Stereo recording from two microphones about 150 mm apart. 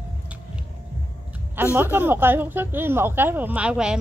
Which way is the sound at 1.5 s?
15° right (ahead or behind).